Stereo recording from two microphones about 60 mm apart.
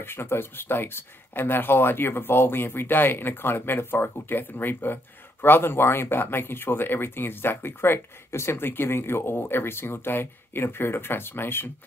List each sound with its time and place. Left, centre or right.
0.0 s speech: left